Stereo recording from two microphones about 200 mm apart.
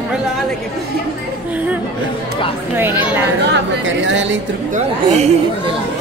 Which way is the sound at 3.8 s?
70° right (ahead or behind).